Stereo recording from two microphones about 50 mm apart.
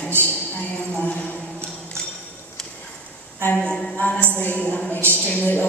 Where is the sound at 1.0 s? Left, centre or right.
Left.